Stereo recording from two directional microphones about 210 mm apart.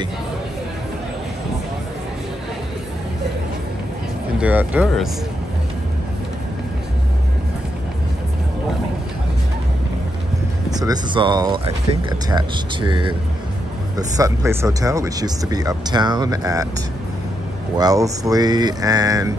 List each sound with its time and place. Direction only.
4.4 s speech: 10° right (ahead or behind)
10.7 s speech: 20° right (ahead or behind)
17.7 s speech: 15° right (ahead or behind)